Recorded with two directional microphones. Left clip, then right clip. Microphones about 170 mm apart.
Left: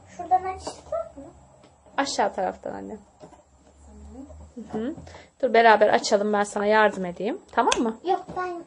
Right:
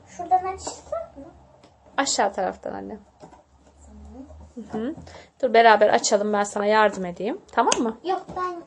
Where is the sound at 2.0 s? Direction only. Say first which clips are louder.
Right 2 dB; 10° right (ahead or behind).